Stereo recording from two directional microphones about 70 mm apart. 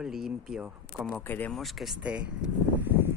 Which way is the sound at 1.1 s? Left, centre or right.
Left.